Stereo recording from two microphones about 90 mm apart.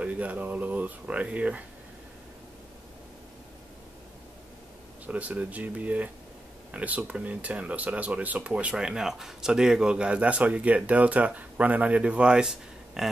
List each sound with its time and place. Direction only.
0.0 s speech: 15° right (ahead or behind)
5.0 s speech: 15° right (ahead or behind)